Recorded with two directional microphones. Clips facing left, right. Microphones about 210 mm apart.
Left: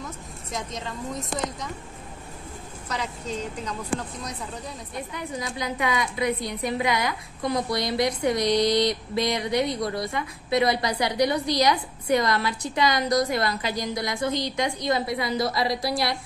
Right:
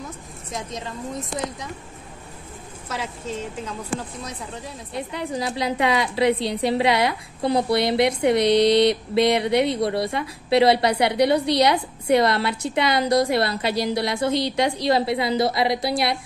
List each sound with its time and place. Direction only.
0.5 s a woman's voice: centre (ahead or behind)
2.9 s a woman's voice: 5° right (ahead or behind)
5.1 s a woman's voice: 30° right (ahead or behind)
8.4 s a sound: 65° right (ahead or behind)
9.4 s a woman's voice: 25° right (ahead or behind)
10.8 s a sound: 65° right (ahead or behind)
11.1 s a woman's voice: 30° right (ahead or behind)
12.4 s a sound: 65° right (ahead or behind)
12.8 s a woman's voice: 30° right (ahead or behind)
14.3 s a woman's voice: 70° right (ahead or behind)
14.9 s a woman's voice: 30° right (ahead or behind)